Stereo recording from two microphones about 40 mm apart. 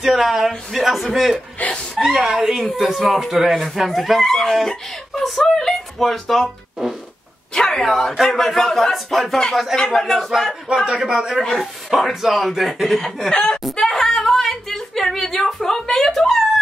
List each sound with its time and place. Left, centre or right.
0.0 s speech: centre
1.6 s speech: left
2.0 s speech: centre
6.4 s speech: centre
7.5 s speech: centre
11.0 s a man's voice: centre
11.5 s speech: centre
13.3 s speech: left; by 16.4 s centre